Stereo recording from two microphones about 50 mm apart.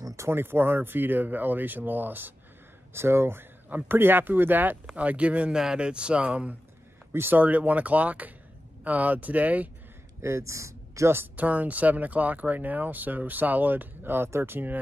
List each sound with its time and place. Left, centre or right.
0.3 s speech: right
2.9 s speech: right
3.6 s speech: right
4.8 s speech: right
7.1 s speech: right
7.3 s speech: right
10.2 s speech: right
11.3 s speech: right